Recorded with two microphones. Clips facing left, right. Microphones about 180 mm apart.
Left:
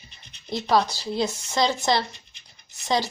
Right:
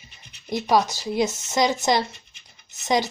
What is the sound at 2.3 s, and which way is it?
Scratch, 35° left (ahead or behind).